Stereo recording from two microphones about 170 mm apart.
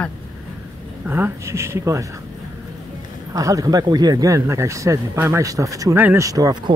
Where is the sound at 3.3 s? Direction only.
20° right (ahead or behind).